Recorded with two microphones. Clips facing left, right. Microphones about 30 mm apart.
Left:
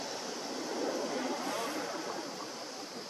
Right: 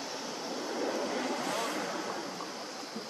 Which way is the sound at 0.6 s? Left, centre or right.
Centre.